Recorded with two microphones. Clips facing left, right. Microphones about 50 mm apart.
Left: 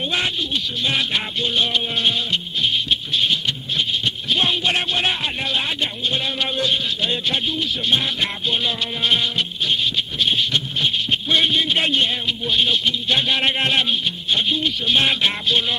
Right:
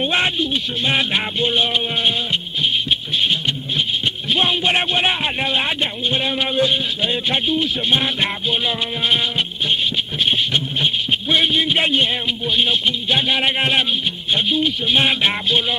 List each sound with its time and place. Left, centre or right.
0.0 s speech: right
4.3 s speech: centre
8.5 s speech: centre
10.2 s insect: right
11.1 s a man's voice: centre